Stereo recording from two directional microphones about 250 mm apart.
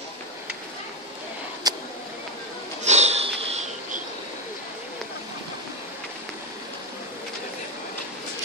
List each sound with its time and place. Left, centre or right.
1.6 s vehicle: centre
2.8 s sniff: right